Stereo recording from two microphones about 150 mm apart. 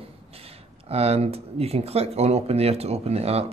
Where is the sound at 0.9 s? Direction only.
40° right (ahead or behind).